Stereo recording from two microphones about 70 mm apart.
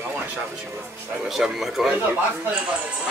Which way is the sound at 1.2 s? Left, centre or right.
Centre.